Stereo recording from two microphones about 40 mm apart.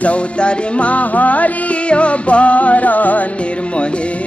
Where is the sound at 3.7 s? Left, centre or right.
Left.